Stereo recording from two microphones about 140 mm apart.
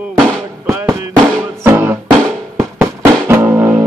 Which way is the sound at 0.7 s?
15° right (ahead or behind).